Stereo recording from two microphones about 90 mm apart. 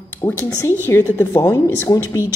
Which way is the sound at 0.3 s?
30° left (ahead or behind).